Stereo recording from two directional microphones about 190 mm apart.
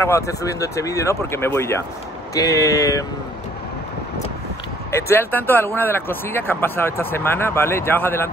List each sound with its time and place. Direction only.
0.0 s speech: 15° left (ahead or behind)
4.9 s speech: 15° left (ahead or behind)